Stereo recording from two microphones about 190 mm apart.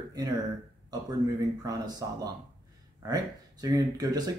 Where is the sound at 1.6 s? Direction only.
20° right (ahead or behind).